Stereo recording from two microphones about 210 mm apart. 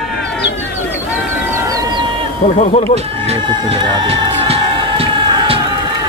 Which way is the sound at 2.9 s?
30° right (ahead or behind).